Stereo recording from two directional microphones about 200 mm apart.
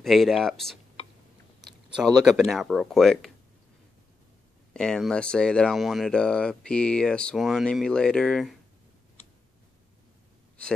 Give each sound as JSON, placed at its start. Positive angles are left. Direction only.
{"t": 0.0, "sound": "speech", "side_deg": 0}
{"t": 1.6, "sound": "a sound", "side_deg": -20}
{"t": 2.2, "sound": "speech", "side_deg": 0}
{"t": 4.7, "sound": "speech", "side_deg": 5}